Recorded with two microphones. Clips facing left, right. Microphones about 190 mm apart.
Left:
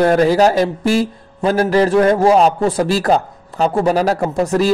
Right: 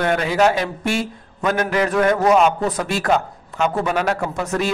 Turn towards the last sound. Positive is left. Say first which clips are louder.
# left 6 dB
turn(degrees=35)  # may be behind; listen again after turning